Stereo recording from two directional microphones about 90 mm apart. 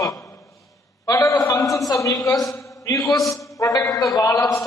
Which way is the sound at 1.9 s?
40° left (ahead or behind).